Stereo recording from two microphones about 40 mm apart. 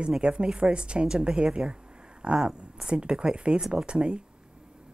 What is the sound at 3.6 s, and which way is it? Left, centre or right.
Speech, centre.